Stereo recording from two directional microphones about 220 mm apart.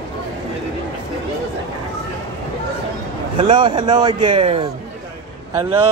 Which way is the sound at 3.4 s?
20° right (ahead or behind).